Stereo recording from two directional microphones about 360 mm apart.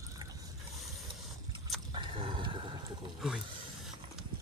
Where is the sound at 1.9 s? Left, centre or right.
Centre.